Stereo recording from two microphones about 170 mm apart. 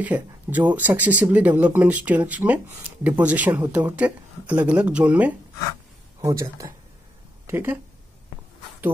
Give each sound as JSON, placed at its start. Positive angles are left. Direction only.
{"t": 0.0, "sound": "a woman's voice", "side_deg": -10}